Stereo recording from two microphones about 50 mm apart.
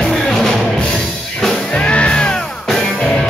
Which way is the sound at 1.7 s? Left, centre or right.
Left.